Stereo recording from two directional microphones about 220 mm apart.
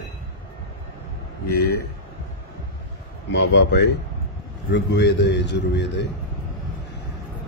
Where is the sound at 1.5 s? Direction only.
45° left (ahead or behind).